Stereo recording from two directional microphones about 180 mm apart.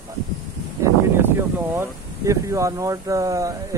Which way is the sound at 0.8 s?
15° right (ahead or behind).